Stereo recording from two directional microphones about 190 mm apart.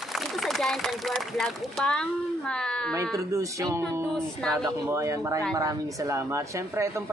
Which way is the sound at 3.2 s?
15° right (ahead or behind).